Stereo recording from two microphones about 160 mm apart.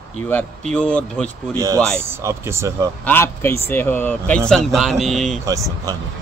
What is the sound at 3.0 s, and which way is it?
Speech, 15° left (ahead or behind).